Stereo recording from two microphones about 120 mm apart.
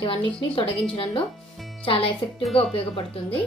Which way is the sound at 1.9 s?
50° left (ahead or behind).